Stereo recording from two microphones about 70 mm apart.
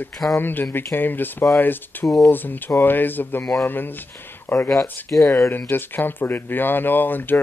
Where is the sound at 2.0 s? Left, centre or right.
Centre.